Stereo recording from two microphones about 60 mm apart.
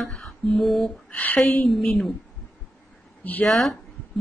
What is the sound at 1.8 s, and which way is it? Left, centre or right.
Speech, centre.